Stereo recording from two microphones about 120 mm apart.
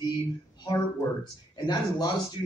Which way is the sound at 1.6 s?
35° left (ahead or behind).